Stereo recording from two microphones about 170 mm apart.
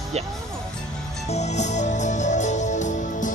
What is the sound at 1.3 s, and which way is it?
Music, 40° left (ahead or behind).